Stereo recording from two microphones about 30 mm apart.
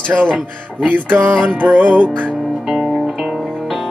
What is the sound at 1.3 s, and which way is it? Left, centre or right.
Music, right.